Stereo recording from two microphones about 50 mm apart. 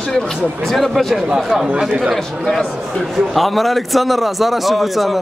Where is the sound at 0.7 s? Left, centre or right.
Centre.